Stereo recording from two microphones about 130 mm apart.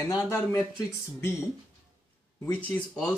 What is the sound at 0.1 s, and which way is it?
Speech, 25° left (ahead or behind).